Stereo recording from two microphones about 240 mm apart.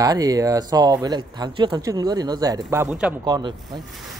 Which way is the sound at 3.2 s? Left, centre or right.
Centre.